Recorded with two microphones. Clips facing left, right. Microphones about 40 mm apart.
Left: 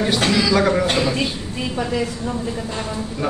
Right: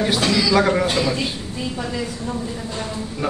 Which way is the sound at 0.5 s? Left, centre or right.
Centre.